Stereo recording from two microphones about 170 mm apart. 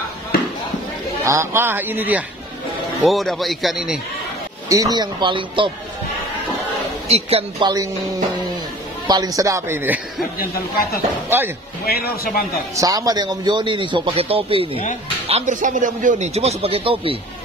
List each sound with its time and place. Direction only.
1.2 s a man's voice: 15° right (ahead or behind)
3.0 s a man's voice: centre (ahead or behind)
4.6 s a man's voice: 20° right (ahead or behind)
7.1 s a man's voice: 35° right (ahead or behind)
9.0 s a man's voice: 25° right (ahead or behind)
11.2 s a man's voice: 15° right (ahead or behind)
11.8 s speech: 65° left (ahead or behind)
12.7 s a man's voice: 20° right (ahead or behind)